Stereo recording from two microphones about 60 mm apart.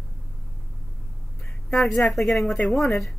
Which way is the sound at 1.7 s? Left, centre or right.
Centre.